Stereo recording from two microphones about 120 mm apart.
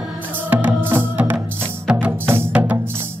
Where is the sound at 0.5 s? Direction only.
15° right (ahead or behind).